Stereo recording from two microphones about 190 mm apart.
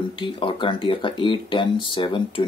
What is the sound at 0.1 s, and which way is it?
Speech, 25° left (ahead or behind).